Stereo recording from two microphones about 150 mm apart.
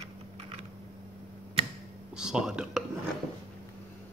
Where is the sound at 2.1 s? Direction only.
5° right (ahead or behind).